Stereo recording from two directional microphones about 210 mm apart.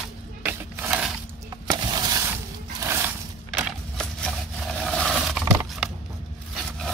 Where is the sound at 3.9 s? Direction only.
Centre (ahead or behind).